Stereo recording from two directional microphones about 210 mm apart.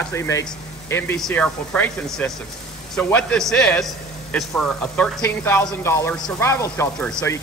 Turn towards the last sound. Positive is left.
turn(degrees=10)  # may be behind; listen again after turning